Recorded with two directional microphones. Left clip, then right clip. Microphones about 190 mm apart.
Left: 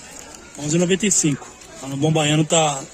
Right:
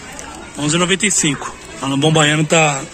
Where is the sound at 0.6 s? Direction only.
10° left (ahead or behind).